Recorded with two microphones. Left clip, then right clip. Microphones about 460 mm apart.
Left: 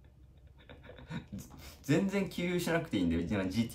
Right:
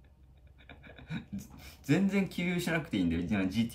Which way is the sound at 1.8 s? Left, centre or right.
Left.